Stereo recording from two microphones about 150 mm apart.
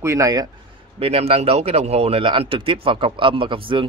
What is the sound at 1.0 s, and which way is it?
Speech, 40° right (ahead or behind).